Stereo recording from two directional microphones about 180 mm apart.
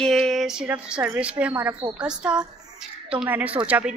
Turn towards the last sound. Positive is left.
turn(degrees=-10)  # may be behind; listen again after turning